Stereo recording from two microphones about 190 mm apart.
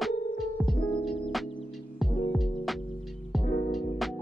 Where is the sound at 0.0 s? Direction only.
Centre (ahead or behind).